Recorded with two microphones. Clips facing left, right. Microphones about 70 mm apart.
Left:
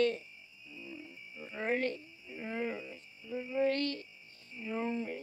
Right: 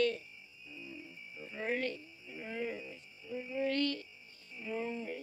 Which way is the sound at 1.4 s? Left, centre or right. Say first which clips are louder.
Left 3 dB; left.